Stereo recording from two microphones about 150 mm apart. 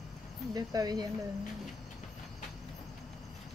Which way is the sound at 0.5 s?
25° right (ahead or behind).